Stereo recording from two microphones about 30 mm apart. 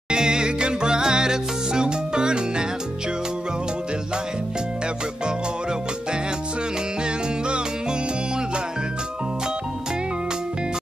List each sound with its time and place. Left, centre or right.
0.1 s salsa music: right